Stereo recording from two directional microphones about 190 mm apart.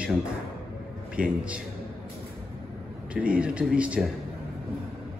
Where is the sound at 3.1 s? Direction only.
5° right (ahead or behind).